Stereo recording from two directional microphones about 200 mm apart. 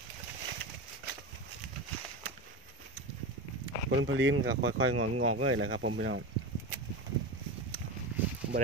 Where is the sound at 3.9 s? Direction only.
70° right (ahead or behind).